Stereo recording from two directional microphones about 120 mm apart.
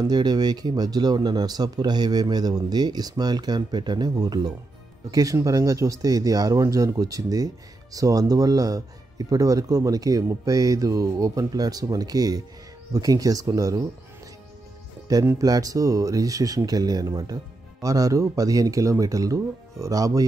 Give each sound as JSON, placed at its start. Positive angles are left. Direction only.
{"t": 0.0, "sound": "speech", "side_deg": -35}
{"t": 15.0, "sound": "speech", "side_deg": -30}